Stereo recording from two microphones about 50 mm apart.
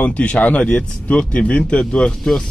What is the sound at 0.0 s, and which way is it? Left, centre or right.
Speech, left.